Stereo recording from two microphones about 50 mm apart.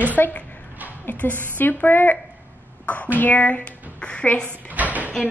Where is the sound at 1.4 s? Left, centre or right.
Left.